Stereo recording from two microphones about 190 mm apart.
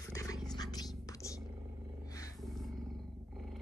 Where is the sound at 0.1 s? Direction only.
15° left (ahead or behind).